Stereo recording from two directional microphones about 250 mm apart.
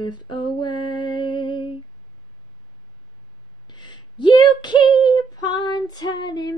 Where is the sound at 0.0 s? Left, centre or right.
Centre.